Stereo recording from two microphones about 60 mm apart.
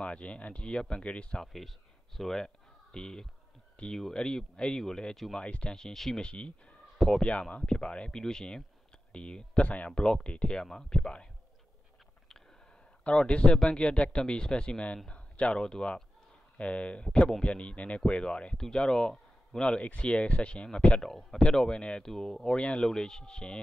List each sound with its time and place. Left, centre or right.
0.0 s speech: left
1.4 s speech: centre
13.0 s speech: centre
22.6 s speech: centre